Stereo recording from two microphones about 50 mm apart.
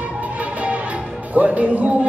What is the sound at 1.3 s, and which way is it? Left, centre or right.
Music, right.